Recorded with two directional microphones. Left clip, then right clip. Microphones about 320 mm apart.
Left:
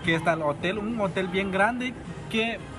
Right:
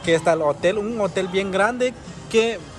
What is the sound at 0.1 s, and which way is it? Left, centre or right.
Speech, centre.